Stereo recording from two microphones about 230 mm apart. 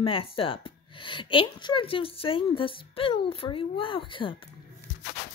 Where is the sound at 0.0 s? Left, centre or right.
Left.